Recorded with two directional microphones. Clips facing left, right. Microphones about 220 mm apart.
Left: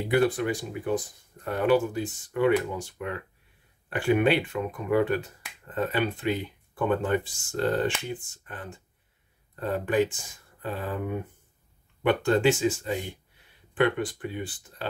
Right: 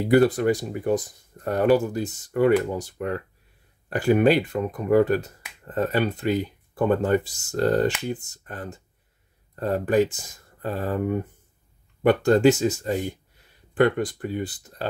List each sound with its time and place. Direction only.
0.1 s speech: 40° right (ahead or behind)
12.0 s speech: 40° right (ahead or behind)